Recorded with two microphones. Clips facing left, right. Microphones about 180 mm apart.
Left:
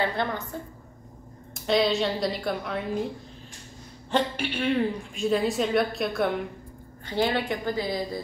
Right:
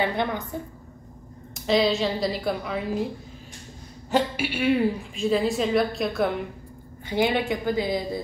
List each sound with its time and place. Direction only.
0.0 s a woman's voice: 15° right (ahead or behind)
1.5 s a woman's voice: centre (ahead or behind)
4.1 s a woman's voice: 10° right (ahead or behind)
7.1 s a woman's voice: 15° right (ahead or behind)